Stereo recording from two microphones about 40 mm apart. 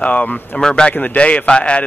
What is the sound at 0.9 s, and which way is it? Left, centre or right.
Speech, left.